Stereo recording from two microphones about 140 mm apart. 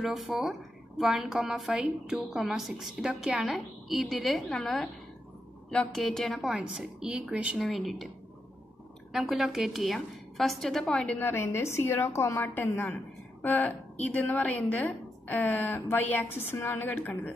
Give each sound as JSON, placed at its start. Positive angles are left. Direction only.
{"t": 0.0, "sound": "a woman's voice", "side_deg": 0}
{"t": 9.1, "sound": "a woman's voice", "side_deg": 0}
{"t": 11.1, "sound": "a woman's voice", "side_deg": 15}